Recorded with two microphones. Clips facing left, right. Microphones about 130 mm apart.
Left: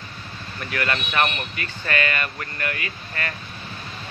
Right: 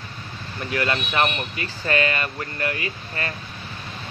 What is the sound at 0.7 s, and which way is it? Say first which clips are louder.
Speech: right 2 dB; 25° right (ahead or behind).